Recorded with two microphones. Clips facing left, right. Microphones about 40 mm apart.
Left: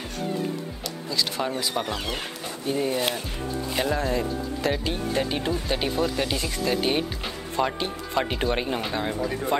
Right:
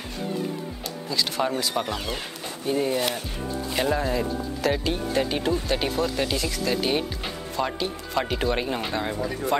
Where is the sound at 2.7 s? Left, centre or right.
Centre.